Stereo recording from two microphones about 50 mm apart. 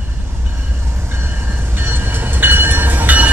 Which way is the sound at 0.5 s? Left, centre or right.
Right.